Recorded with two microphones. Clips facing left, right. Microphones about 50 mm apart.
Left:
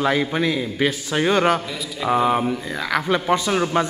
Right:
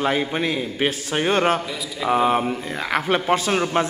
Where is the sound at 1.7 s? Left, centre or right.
Centre.